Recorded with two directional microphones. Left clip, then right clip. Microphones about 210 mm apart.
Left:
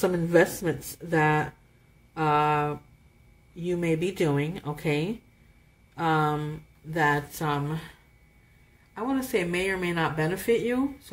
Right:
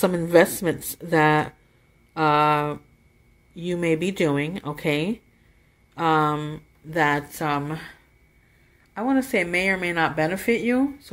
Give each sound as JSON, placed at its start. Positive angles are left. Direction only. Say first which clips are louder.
{"t": 0.0, "sound": "speech", "louder": "right 4 dB", "side_deg": -35}
{"t": 8.9, "sound": "speech", "louder": "right 5 dB", "side_deg": -30}